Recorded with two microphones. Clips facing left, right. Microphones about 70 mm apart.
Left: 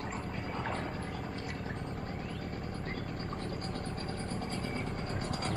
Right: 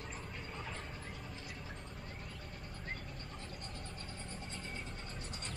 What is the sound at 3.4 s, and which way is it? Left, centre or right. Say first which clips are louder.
Vehicle: left 10 dB; left.